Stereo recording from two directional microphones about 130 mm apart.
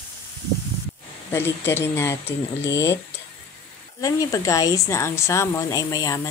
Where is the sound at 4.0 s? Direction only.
30° left (ahead or behind).